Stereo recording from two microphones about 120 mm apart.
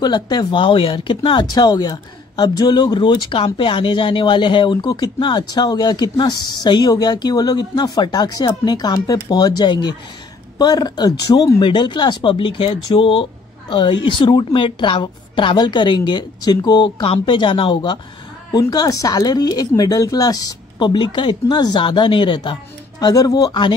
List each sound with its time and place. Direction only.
0.0 s speech: 35° left (ahead or behind)
11.6 s speech: 40° left (ahead or behind)
17.0 s speech: 50° left (ahead or behind)
18.5 s speech: 35° left (ahead or behind)